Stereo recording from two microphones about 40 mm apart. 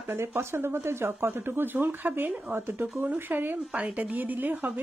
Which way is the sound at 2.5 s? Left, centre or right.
Right.